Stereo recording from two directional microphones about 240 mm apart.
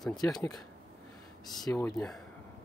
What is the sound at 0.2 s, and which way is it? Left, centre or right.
Speech, centre.